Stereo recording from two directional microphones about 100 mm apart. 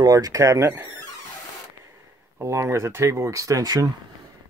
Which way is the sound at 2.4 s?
30° right (ahead or behind).